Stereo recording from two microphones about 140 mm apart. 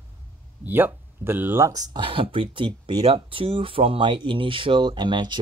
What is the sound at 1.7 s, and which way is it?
Speech, 30° right (ahead or behind).